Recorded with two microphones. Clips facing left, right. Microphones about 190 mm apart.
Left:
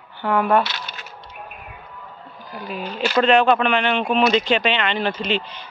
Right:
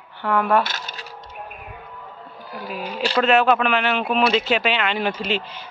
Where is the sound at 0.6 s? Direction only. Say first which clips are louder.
Left 1 dB; 45° right (ahead or behind).